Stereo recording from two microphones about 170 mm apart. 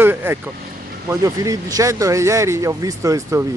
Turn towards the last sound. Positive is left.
turn(degrees=-20)  # may be behind; listen again after turning